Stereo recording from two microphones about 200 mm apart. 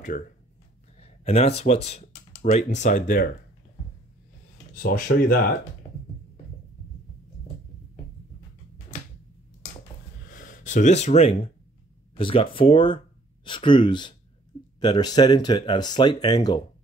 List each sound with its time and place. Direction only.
0.9 s speech: 30° left (ahead or behind)
4.8 s speech: 45° left (ahead or behind)
5.9 s music: 30° left (ahead or behind)
10.2 s gasp: 40° left (ahead or behind)
12.2 s speech: 25° left (ahead or behind)